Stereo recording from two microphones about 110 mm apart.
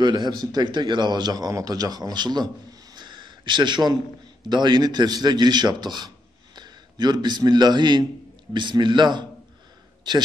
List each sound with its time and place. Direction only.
0.0 s a man's voice: 40° right (ahead or behind)